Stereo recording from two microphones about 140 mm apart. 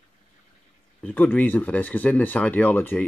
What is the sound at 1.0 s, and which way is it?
Speech, 10° left (ahead or behind).